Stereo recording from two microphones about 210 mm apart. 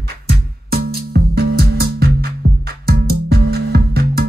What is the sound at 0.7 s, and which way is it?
Music, 50° right (ahead or behind).